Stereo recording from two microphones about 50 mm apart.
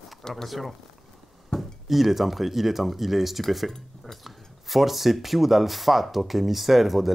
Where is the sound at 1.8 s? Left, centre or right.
Centre.